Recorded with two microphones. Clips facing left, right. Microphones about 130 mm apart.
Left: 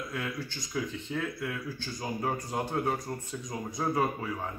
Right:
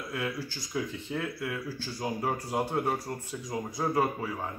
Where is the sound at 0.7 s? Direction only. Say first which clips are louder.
Even; 5° right (ahead or behind).